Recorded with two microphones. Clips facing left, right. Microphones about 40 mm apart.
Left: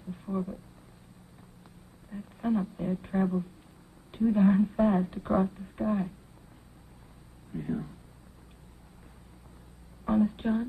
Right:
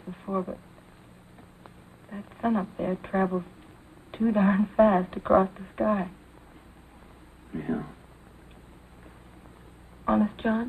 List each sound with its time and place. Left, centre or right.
0.0 s a sound: right
2.0 s speech: right
7.5 s speech: right
10.0 s a woman's voice: right